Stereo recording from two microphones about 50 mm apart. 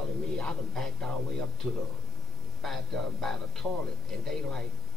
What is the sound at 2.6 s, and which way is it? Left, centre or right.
Speech, centre.